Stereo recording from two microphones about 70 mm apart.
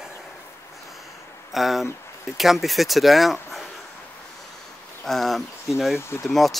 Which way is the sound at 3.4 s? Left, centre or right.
Centre.